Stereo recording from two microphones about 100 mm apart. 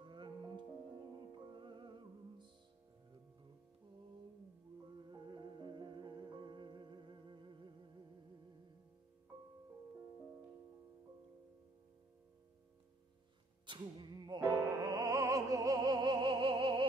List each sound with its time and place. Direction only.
0.0 s music: 50° right (ahead or behind)
5.0 s music: 45° right (ahead or behind)
13.7 s music: 55° right (ahead or behind)
14.5 s music: 35° right (ahead or behind); by 16.8 s 65° right (ahead or behind)